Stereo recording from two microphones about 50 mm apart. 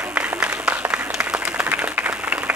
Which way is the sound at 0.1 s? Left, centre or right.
Right.